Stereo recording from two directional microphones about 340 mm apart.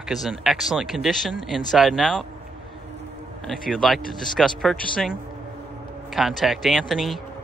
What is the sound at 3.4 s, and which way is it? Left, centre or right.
Speech, centre.